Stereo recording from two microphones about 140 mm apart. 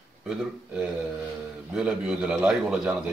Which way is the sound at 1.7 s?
5° right (ahead or behind).